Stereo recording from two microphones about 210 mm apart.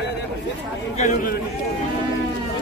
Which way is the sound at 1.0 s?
35° left (ahead or behind).